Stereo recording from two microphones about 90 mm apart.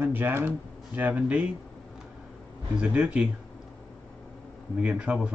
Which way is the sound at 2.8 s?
15° right (ahead or behind).